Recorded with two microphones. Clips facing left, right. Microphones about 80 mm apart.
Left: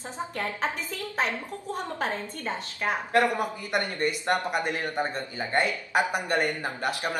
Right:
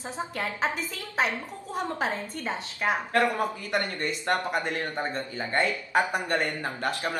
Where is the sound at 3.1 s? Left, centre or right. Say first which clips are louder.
Left 3 dB; centre.